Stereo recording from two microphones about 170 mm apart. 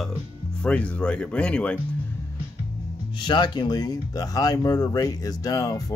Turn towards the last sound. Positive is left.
turn(degrees=20)  # may be behind; listen again after turning